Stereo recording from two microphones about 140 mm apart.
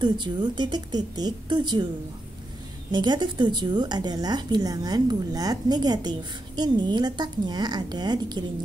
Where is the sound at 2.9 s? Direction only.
30° right (ahead or behind).